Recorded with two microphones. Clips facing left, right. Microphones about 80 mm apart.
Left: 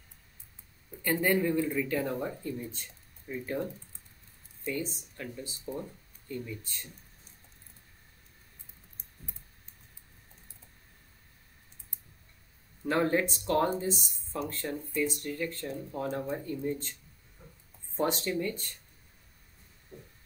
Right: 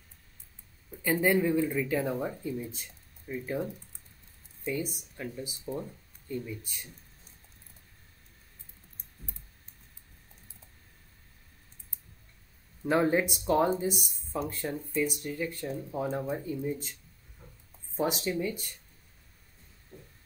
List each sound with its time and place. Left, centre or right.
1.0 s speech: centre
4.9 s speech: centre
12.8 s speech: centre
17.9 s speech: centre
19.9 s a sound: centre